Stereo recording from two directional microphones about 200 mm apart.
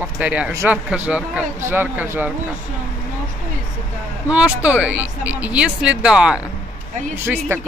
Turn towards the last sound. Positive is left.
turn(degrees=-10)  # may be behind; listen again after turning